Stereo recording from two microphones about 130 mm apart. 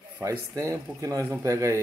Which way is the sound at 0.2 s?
25° right (ahead or behind).